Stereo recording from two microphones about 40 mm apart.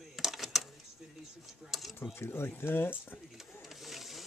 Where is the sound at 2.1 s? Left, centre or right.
Left.